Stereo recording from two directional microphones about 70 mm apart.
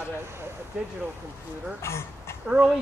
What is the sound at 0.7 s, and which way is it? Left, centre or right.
Speech, centre.